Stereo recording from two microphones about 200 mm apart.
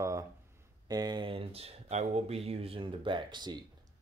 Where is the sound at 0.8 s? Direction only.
20° right (ahead or behind).